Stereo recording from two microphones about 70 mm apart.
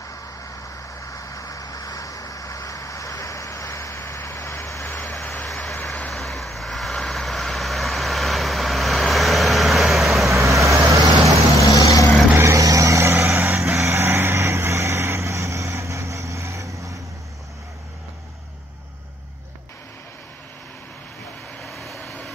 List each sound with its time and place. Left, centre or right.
0.0 s vehicle: left
4.8 s vehicle: left
5.1 s vehicle: centre
10.3 s vehicle: right
11.7 s vehicle: left
12.4 s vehicle: right
13.1 s vehicle: right
21.6 s vehicle: centre